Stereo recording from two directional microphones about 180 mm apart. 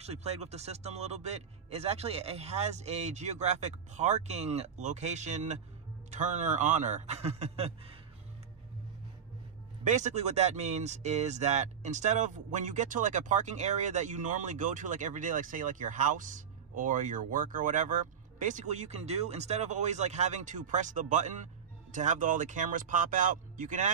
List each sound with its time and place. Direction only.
0.0 s a man's voice: 35° right (ahead or behind)
9.8 s speech: 40° right (ahead or behind)